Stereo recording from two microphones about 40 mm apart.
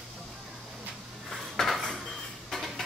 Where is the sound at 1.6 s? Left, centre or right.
Centre.